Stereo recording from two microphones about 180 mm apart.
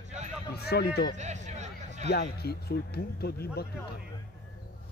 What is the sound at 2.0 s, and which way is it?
Speech, 60° left (ahead or behind).